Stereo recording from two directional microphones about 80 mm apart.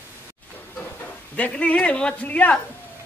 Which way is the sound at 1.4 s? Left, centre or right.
Centre.